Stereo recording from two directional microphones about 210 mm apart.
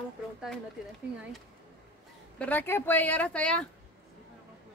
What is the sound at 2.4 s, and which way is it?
Speech, 10° left (ahead or behind).